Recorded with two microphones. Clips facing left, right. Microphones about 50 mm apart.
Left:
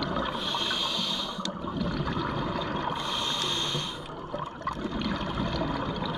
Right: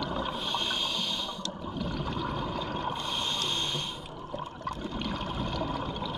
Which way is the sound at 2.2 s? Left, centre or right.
Centre.